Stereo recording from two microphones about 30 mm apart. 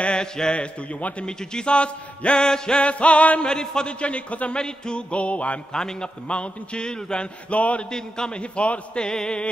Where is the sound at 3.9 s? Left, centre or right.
Left.